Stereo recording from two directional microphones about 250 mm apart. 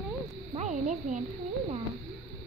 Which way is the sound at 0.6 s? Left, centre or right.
Right.